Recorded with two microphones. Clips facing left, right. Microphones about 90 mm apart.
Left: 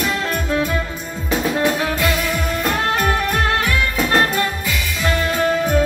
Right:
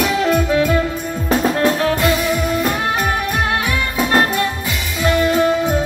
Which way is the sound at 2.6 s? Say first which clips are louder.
Right 1 dB; 5° right (ahead or behind).